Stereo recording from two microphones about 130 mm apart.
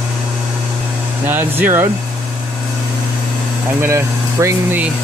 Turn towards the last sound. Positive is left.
turn(degrees=-20)  # may be behind; listen again after turning